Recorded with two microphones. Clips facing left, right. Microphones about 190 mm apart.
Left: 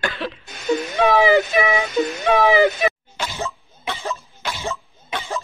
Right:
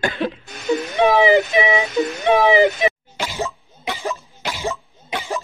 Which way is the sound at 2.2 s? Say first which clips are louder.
Right 2 dB; 15° right (ahead or behind).